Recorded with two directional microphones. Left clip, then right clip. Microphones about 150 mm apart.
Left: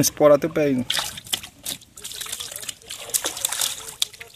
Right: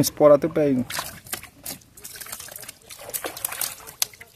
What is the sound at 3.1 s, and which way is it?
Trickle, 50° right (ahead or behind).